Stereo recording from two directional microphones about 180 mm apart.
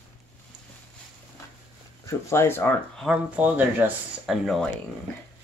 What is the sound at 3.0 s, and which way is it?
Speech, 5° right (ahead or behind).